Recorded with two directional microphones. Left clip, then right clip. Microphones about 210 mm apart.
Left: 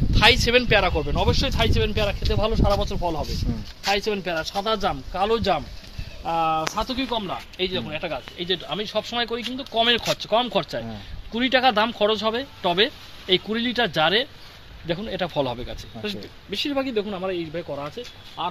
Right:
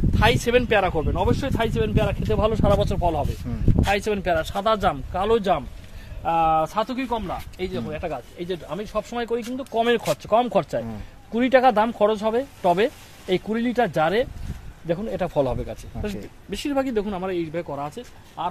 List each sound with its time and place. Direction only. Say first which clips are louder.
0.2 s speech: left 2 dB; 35° right (ahead or behind); by 18.5 s 50° right (ahead or behind)